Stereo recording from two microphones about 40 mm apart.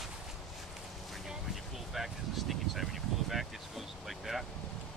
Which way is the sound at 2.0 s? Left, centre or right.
Centre.